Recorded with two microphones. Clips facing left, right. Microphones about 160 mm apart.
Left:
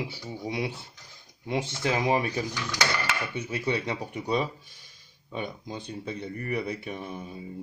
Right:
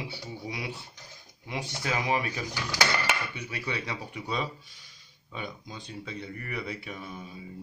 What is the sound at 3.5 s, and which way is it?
Speech, 25° left (ahead or behind).